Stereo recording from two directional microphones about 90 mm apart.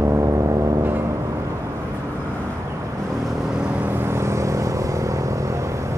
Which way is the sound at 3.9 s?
25° right (ahead or behind).